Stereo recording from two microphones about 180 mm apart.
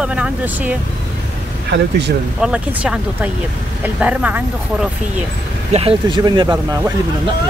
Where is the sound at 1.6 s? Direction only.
75° right (ahead or behind).